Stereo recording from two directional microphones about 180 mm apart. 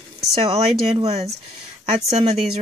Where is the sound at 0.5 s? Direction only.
35° right (ahead or behind).